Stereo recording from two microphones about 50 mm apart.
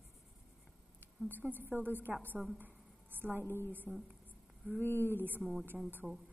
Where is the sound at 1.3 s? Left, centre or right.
Right.